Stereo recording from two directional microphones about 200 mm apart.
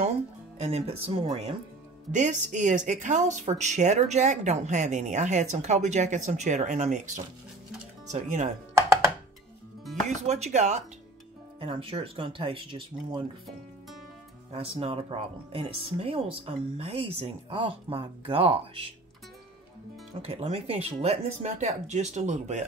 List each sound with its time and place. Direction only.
0.6 s speech: 30° right (ahead or behind)
10.0 s speech: 35° right (ahead or behind)
14.5 s speech: 30° right (ahead or behind)
20.2 s speech: 30° right (ahead or behind)